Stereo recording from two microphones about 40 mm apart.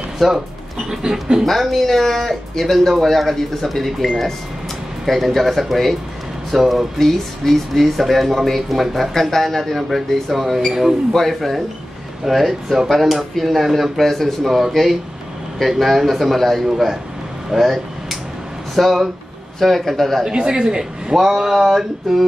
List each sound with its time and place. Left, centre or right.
0.2 s speech: centre
1.4 s speech: centre
7.0 s speech: centre
11.1 s speech: centre
16.6 s speech: centre
18.8 s speech: centre
20.2 s speech: right
21.1 s speech: centre